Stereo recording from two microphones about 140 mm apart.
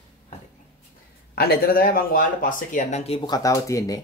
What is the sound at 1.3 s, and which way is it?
Speech, 90° left.